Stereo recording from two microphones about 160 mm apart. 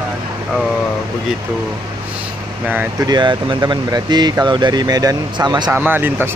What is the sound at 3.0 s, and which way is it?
Speech, 25° right (ahead or behind).